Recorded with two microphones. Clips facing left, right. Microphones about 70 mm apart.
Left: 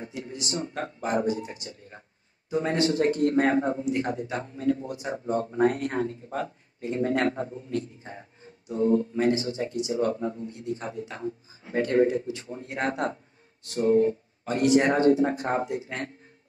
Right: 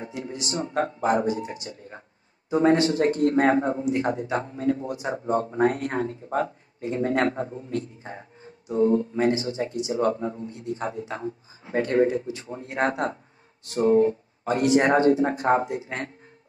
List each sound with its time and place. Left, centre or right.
0.1 s a man's voice: right